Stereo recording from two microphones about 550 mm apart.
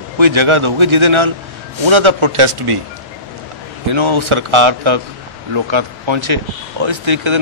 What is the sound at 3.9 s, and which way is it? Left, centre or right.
A man's voice, right.